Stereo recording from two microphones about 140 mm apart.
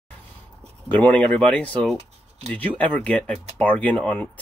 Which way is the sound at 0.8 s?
10° left (ahead or behind).